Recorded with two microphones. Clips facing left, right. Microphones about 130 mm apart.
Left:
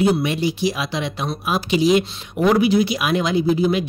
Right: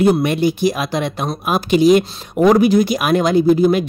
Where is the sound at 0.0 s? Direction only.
50° right (ahead or behind).